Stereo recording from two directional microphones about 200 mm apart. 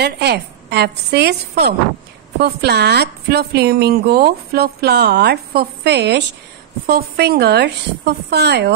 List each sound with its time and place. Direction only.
0.0 s a woman's voice: 55° right (ahead or behind)